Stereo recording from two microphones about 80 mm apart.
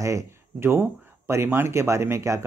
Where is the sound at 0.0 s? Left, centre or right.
Right.